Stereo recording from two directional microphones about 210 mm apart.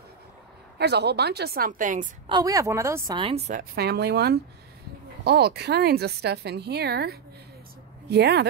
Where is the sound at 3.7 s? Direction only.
50° right (ahead or behind).